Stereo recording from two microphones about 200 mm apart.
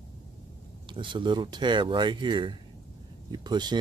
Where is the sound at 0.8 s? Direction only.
25° right (ahead or behind).